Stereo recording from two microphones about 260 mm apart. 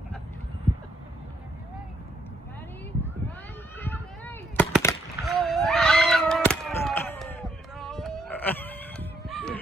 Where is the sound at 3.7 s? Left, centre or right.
Centre.